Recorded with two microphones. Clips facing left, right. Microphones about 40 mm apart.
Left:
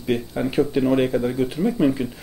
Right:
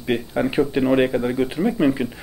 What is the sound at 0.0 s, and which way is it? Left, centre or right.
Speech, right.